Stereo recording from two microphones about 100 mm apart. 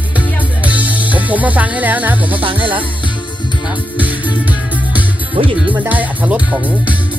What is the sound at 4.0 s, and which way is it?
Music, 15° right (ahead or behind).